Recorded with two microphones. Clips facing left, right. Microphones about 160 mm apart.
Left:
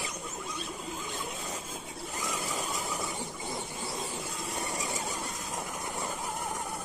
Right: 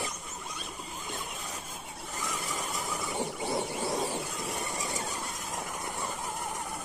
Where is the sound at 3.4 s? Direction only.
70° right (ahead or behind).